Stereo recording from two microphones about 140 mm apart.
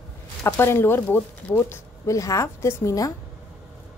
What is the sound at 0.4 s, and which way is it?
Speech, 20° left (ahead or behind).